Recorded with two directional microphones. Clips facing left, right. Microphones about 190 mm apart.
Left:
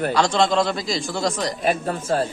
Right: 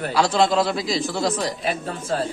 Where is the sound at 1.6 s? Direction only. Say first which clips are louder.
Left 4 dB; 45° left (ahead or behind).